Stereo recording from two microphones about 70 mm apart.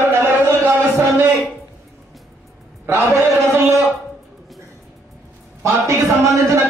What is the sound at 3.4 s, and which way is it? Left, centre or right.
Speech, right.